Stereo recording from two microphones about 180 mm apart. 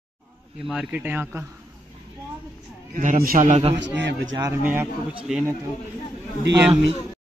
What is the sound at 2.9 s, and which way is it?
Speech, 45° right (ahead or behind).